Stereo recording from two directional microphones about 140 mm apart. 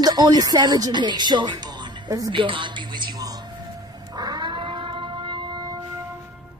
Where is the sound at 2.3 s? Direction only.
35° right (ahead or behind).